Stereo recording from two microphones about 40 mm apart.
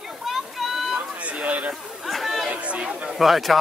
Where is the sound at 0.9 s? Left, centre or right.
Centre.